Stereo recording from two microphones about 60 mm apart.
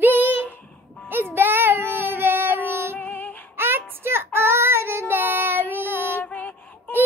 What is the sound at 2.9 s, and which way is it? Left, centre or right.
Female singing, left.